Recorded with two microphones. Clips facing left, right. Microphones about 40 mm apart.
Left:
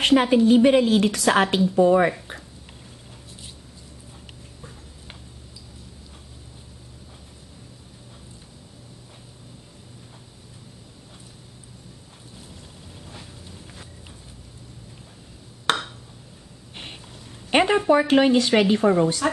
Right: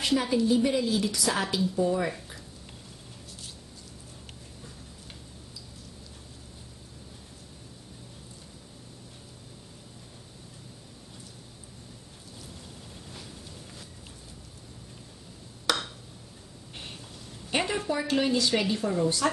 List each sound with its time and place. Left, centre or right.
0.0 s a woman's voice: left
15.7 s a sound: left
17.7 s a woman's voice: left